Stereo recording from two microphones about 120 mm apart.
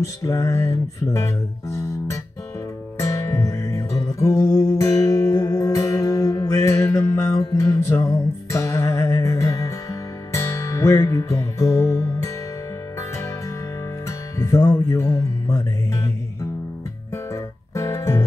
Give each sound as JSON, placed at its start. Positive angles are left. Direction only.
{"t": 0.0, "sound": "music", "side_deg": 25}
{"t": 14.4, "sound": "music", "side_deg": 25}
{"t": 17.3, "sound": "music", "side_deg": 25}